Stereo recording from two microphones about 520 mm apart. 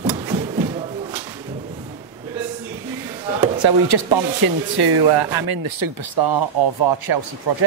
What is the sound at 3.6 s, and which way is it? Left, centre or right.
Speech, right.